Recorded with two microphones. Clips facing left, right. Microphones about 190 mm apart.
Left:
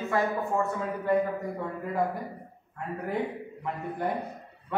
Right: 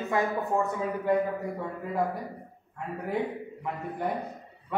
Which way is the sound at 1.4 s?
5° right (ahead or behind).